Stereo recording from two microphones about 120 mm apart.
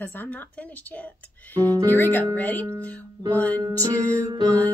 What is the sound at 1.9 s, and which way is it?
Speech, 15° left (ahead or behind).